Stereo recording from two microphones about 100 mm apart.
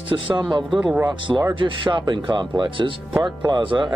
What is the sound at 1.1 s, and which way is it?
Speech, 50° right (ahead or behind).